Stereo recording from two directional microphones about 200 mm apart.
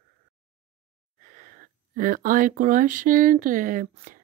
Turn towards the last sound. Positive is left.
turn(degrees=-40)  # may be behind; listen again after turning